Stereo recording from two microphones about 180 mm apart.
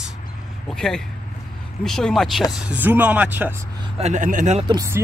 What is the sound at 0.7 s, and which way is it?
Speech, 5° left (ahead or behind).